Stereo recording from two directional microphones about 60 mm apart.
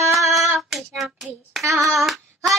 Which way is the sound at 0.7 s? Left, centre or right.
Centre.